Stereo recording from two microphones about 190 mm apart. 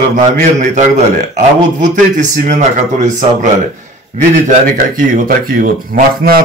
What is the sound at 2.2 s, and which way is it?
Speech, 40° right (ahead or behind).